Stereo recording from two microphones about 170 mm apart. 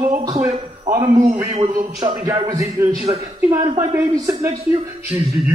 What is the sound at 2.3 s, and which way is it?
Speech, 20° right (ahead or behind).